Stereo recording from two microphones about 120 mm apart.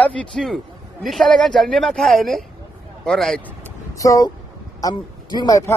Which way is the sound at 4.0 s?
30° left (ahead or behind).